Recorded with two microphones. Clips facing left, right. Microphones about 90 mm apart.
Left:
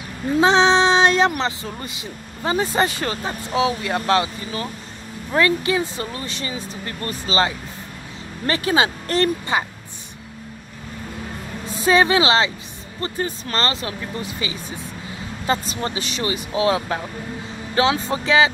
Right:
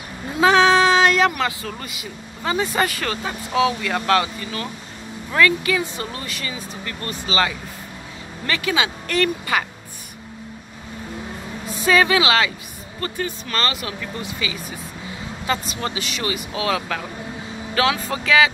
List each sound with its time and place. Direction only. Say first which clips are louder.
0.4 s a sound: right 1 dB; 25° left (ahead or behind)
1.4 s speech: even; 25° left (ahead or behind)
11.6 s speech: left 1 dB; 35° left (ahead or behind)